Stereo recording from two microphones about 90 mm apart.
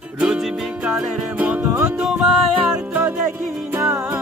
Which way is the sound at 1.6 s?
35° right (ahead or behind).